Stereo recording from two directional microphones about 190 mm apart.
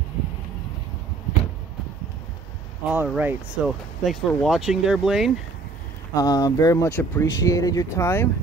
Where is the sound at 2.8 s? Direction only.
5° right (ahead or behind).